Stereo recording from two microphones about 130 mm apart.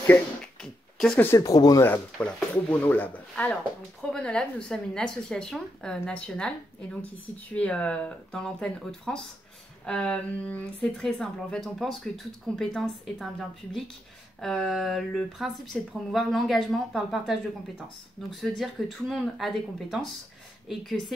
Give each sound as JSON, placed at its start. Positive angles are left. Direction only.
{"t": 0.6, "sound": "a sound", "side_deg": 5}
{"t": 1.2, "sound": "speech", "side_deg": 25}
{"t": 2.1, "sound": "speech", "side_deg": 10}
{"t": 14.4, "sound": "speech", "side_deg": 5}
{"t": 18.4, "sound": "speech", "side_deg": 0}